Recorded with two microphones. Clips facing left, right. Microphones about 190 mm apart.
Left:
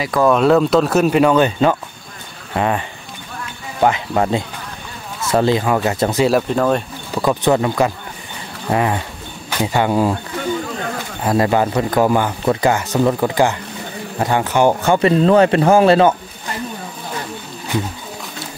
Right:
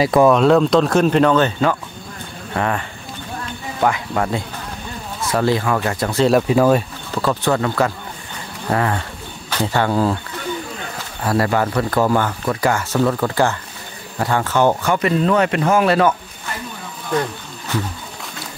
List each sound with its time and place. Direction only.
0.3 s speech: 5° left (ahead or behind); by 2.8 s 20° left (ahead or behind)
3.8 s a man's voice: 25° left (ahead or behind)
6.2 s speech: 5° right (ahead or behind)
7.2 s speech: 15° left (ahead or behind)
11.2 s a man's voice: 20° left (ahead or behind)
14.9 s a man's voice: 30° left (ahead or behind)